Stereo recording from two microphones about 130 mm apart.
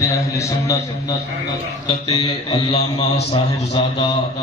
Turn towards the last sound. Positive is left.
turn(degrees=50)  # may be behind; listen again after turning